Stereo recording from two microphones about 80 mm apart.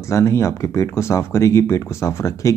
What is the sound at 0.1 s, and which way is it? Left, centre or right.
Speech, left.